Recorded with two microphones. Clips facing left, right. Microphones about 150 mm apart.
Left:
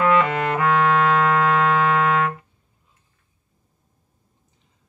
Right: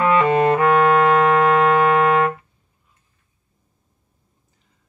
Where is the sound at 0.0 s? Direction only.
25° right (ahead or behind).